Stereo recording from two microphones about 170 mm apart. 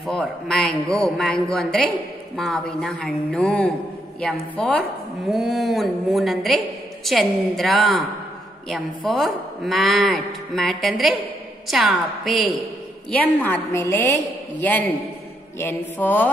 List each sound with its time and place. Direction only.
0.0 s a woman's voice: centre (ahead or behind)
13.1 s a woman's voice: 10° left (ahead or behind)